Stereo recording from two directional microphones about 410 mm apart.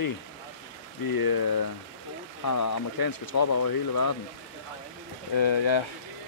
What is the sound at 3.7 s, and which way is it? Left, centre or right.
Speech, left.